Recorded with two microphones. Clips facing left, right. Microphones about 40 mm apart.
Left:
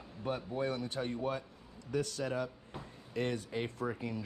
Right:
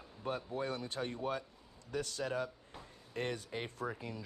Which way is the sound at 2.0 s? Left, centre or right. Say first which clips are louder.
Left 2 dB; right.